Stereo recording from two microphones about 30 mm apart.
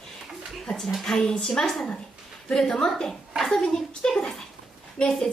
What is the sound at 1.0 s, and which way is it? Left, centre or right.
Speech, centre.